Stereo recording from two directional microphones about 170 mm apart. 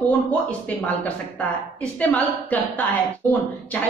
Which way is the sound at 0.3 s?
10° left (ahead or behind).